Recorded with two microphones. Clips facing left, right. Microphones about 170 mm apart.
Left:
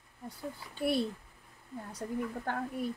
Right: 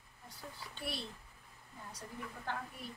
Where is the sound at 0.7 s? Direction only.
55° left (ahead or behind).